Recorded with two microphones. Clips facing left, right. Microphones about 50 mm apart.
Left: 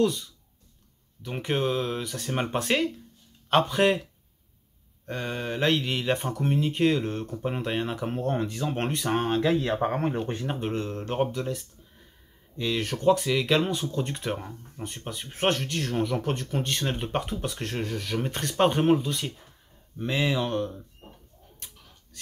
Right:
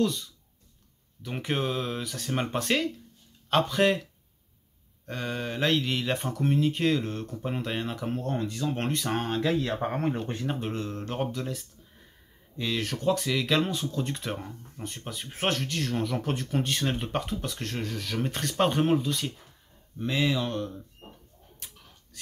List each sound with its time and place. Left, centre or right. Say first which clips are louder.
0.0 s speech: left 3 dB; centre
5.0 s speech: left 1 dB; centre
8.4 s speech: left 1 dB; left
8.7 s speech: left 5 dB; centre
20.0 s speech: left 1 dB; centre